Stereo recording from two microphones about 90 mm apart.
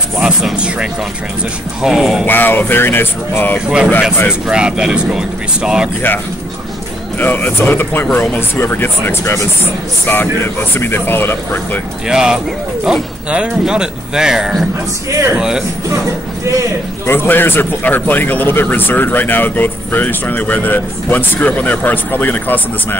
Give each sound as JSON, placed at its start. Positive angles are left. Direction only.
{"t": 0.2, "sound": "speech", "side_deg": -5}
{"t": 2.2, "sound": "a man's voice", "side_deg": 20}
{"t": 3.5, "sound": "speech", "side_deg": -10}
{"t": 7.2, "sound": "a man's voice", "side_deg": 20}
{"t": 12.1, "sound": "speech", "side_deg": -5}
{"t": 17.0, "sound": "a man's voice", "side_deg": 25}